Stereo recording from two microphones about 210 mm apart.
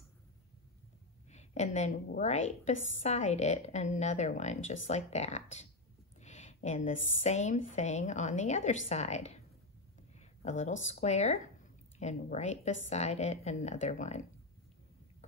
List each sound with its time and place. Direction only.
1.3 s a woman's voice: 30° left (ahead or behind)
10.1 s a sound: 35° left (ahead or behind)
10.9 s a woman's voice: 30° left (ahead or behind)